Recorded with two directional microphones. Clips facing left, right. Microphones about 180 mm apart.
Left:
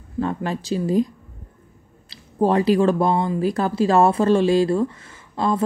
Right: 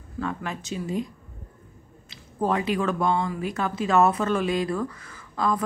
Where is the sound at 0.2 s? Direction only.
30° left (ahead or behind).